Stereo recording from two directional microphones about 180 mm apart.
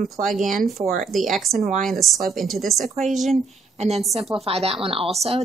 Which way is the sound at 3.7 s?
35° right (ahead or behind).